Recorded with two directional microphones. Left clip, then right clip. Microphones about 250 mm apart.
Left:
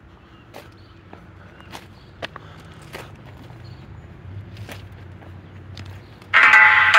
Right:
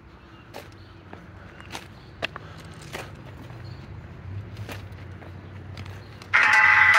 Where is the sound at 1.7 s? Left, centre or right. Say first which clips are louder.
Right 1 dB; centre.